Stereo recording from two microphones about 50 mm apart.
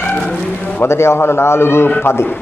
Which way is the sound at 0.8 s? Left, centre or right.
Left.